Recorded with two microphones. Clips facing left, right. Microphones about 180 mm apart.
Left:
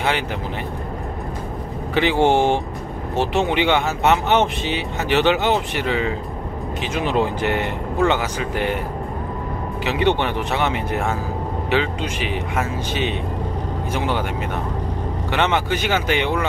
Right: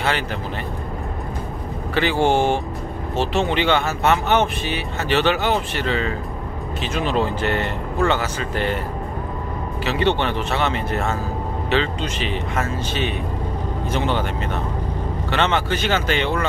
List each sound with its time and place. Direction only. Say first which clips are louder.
2.0 s speech: left 2 dB; 20° left (ahead or behind)
9.8 s speech: left 1 dB; 15° left (ahead or behind)